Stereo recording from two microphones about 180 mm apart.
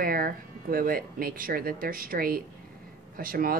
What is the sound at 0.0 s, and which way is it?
Speech, 55° right (ahead or behind).